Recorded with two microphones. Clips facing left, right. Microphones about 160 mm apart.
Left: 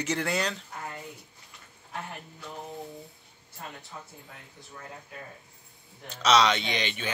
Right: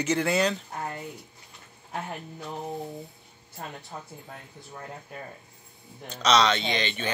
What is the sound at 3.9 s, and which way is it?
Speech, 50° right (ahead or behind).